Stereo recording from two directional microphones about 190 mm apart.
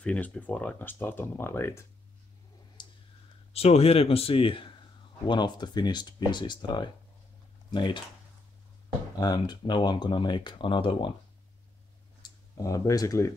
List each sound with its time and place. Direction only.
0.0 s speech: 5° left (ahead or behind)
2.8 s clicking: 25° left (ahead or behind)
3.5 s a man's voice: 30° left (ahead or behind)
9.2 s speech: 20° left (ahead or behind)
12.2 s speech: 15° left (ahead or behind)